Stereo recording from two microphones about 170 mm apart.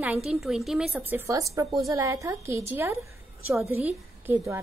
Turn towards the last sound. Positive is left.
turn(degrees=-15)  # may be behind; listen again after turning